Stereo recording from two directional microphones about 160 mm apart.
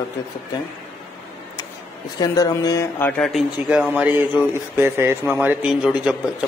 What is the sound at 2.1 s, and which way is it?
Speech, 25° left (ahead or behind).